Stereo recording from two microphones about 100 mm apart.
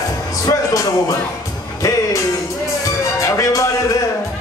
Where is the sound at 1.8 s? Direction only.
30° left (ahead or behind).